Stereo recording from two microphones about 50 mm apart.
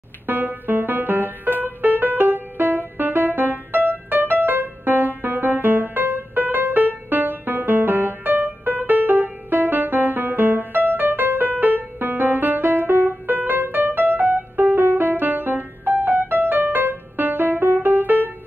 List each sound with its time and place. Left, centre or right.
0.3 s music: right
1.6 s piano: right